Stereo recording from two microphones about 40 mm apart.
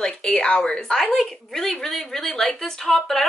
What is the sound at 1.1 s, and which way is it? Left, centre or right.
Speech, centre.